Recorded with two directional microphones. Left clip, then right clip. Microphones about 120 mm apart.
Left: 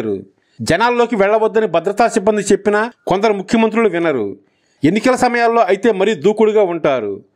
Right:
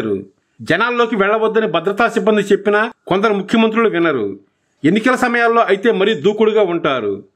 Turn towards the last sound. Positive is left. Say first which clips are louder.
# left 1 dB
turn(degrees=40)  # may be behind; listen again after turning